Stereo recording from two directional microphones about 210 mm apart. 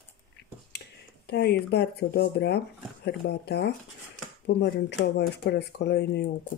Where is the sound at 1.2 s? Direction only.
50° left (ahead or behind).